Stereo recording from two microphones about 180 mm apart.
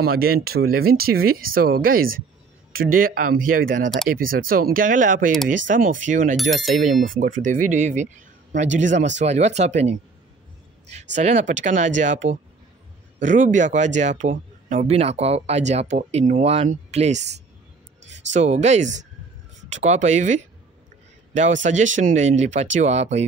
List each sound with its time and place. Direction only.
0.0 s speech: 55° right (ahead or behind); by 9.9 s 40° right (ahead or behind)
11.1 s a man's voice: 40° right (ahead or behind)